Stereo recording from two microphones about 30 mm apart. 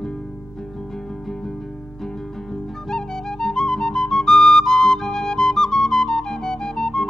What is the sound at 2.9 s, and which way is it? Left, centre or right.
Music, left.